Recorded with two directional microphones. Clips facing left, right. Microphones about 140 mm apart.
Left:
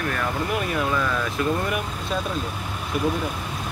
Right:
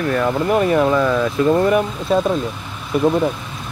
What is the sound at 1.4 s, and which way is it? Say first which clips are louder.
Speech: right 8 dB; 25° right (ahead or behind).